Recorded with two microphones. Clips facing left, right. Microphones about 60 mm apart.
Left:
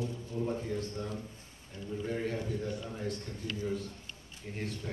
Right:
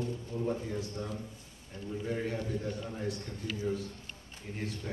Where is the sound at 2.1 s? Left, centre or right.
Centre.